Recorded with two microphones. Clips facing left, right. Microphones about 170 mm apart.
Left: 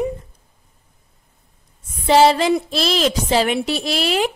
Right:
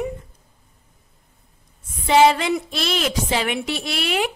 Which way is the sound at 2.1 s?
35° left (ahead or behind).